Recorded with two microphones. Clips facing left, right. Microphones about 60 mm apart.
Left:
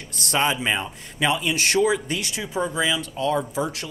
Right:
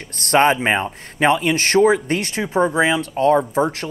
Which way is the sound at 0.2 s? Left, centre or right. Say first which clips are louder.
Right 8 dB; right.